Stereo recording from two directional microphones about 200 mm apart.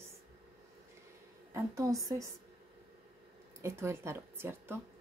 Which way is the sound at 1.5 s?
15° right (ahead or behind).